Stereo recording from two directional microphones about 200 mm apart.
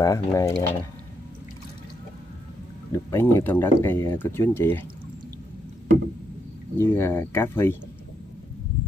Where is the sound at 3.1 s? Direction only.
10° left (ahead or behind).